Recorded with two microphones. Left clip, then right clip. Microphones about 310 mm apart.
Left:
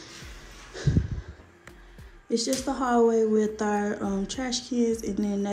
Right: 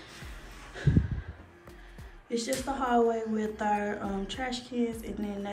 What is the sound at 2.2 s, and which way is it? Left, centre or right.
Speech, centre.